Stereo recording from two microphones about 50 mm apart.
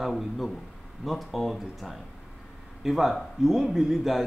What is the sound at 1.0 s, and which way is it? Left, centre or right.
A man's voice, centre.